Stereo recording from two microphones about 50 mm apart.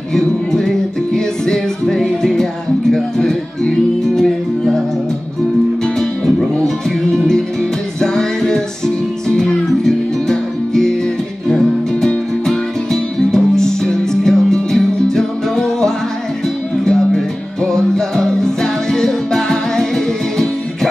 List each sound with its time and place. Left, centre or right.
0.1 s music: centre
8.0 s music: centre